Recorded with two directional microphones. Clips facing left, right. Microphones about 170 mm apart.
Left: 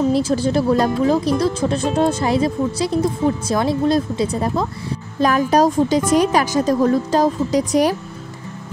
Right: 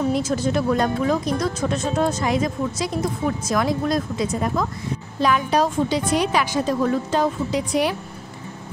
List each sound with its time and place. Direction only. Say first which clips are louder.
0.1 s speech: left 4 dB; 30° left (ahead or behind)
5.2 s speech: left 5 dB; 45° left (ahead or behind)